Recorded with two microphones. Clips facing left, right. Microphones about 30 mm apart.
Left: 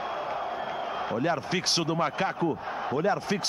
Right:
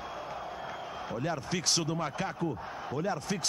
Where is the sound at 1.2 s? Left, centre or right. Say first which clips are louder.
Left 4 dB; left.